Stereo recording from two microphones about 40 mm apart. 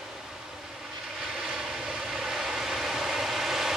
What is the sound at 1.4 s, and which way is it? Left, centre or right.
Vehicle, centre.